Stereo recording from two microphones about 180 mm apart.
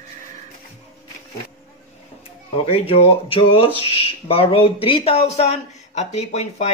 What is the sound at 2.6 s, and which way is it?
Speech, 30° left (ahead or behind).